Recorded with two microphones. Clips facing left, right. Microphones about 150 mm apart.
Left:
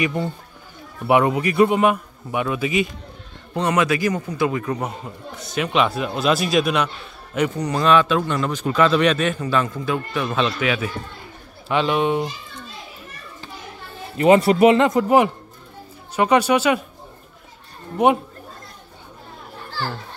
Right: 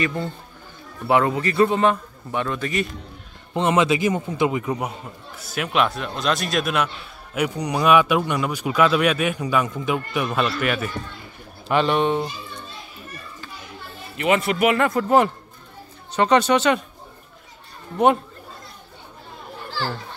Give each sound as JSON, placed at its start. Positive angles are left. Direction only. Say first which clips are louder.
{"t": 0.0, "sound": "a man's voice", "louder": "left 2 dB", "side_deg": 15}
{"t": 3.5, "sound": "a man's voice", "louder": "right 1 dB", "side_deg": -20}
{"t": 10.2, "sound": "a man's voice", "louder": "left 2 dB", "side_deg": -5}
{"t": 14.1, "sound": "a man's voice", "louder": "left 7 dB", "side_deg": 30}
{"t": 17.9, "sound": "a man's voice", "louder": "left 1 dB", "side_deg": 10}